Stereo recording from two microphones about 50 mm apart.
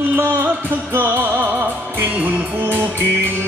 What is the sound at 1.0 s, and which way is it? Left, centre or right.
Music, right.